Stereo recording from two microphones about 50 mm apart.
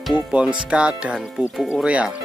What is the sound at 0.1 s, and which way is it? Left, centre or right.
Speech, right.